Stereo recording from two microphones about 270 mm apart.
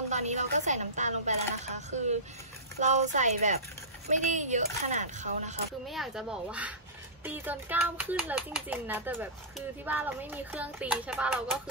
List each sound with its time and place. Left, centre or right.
0.1 s speech: right
5.9 s speech: centre